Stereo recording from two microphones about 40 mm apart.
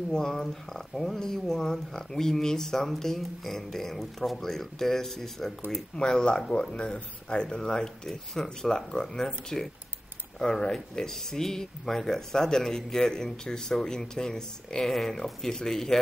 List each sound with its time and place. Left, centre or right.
0.1 s speech: centre
5.9 s speech: left